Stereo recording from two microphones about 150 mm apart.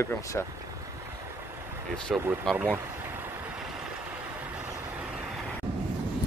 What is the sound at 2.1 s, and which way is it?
Speech, 5° right (ahead or behind).